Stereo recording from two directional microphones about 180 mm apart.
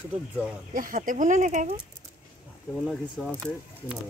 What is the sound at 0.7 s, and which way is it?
Speech, 50° right (ahead or behind).